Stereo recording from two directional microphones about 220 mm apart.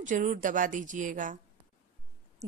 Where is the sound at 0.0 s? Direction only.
35° right (ahead or behind).